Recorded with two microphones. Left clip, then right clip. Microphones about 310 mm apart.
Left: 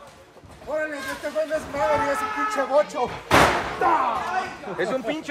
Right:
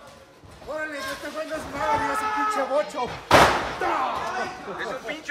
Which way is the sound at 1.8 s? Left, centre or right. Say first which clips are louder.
Left 1 dB; centre.